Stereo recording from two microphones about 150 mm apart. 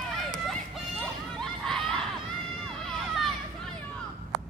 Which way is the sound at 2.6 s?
Centre (ahead or behind).